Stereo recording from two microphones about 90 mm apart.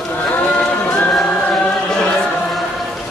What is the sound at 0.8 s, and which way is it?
Music, 20° left (ahead or behind).